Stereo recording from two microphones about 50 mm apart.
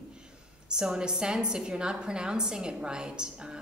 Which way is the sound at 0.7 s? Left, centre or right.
Centre.